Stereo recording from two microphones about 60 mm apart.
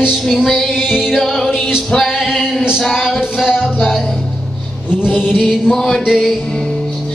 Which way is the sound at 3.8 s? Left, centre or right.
Centre.